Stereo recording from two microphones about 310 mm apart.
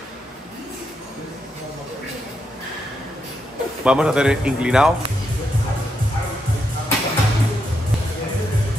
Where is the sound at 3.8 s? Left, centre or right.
Centre.